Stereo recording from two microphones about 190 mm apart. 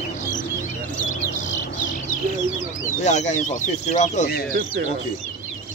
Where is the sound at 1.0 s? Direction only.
40° left (ahead or behind).